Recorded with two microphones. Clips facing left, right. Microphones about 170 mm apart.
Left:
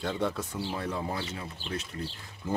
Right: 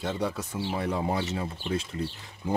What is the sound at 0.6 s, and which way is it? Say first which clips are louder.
Speech: right 8 dB; 15° right (ahead or behind).